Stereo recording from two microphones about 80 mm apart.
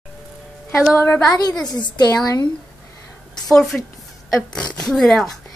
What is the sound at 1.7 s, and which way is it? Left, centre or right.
Speech, left.